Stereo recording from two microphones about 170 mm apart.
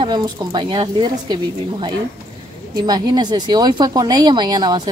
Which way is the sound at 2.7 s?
25° right (ahead or behind).